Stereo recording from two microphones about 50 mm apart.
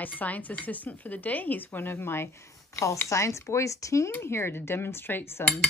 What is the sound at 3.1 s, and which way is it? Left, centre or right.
A woman's voice, left.